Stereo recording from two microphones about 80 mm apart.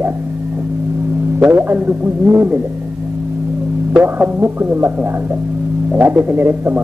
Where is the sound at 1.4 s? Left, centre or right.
Right.